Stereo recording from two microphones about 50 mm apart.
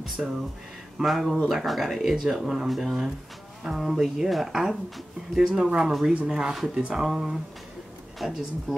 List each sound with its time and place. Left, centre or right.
0.0 s speech: centre